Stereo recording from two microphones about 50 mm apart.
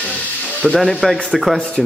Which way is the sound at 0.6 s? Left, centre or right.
Centre.